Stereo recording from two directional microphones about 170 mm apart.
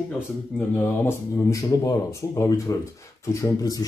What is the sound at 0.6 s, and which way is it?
Speech, 10° left (ahead or behind).